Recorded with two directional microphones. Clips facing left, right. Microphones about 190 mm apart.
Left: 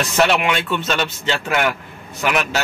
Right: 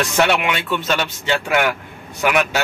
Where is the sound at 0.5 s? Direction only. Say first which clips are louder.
Even; 10° right (ahead or behind).